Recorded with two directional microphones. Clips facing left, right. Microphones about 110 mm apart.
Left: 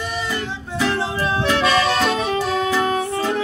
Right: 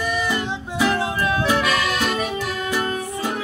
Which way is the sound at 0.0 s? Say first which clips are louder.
Right 3 dB; 25° left (ahead or behind).